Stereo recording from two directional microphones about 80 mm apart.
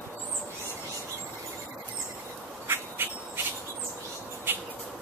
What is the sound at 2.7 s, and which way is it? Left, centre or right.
Insect, right.